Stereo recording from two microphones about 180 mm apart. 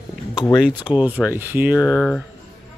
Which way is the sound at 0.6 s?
5° right (ahead or behind).